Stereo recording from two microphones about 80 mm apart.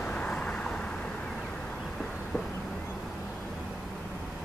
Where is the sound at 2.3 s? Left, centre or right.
Centre.